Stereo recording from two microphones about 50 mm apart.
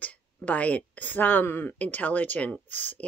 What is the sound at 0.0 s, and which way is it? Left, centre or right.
Speech, left.